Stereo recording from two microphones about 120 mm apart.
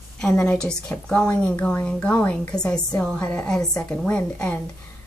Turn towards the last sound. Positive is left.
turn(degrees=10)  # may be behind; listen again after turning